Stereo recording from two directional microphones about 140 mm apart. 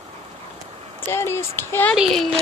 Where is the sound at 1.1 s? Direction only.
20° left (ahead or behind).